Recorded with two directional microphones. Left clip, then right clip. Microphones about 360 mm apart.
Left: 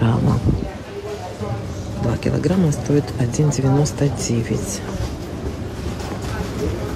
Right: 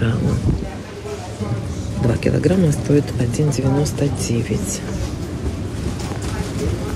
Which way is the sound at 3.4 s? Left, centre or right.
Left.